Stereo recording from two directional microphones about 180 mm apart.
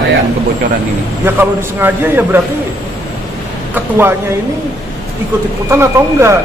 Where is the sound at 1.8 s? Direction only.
10° right (ahead or behind).